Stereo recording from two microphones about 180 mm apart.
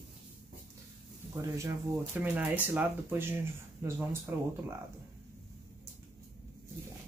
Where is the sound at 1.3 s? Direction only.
15° right (ahead or behind).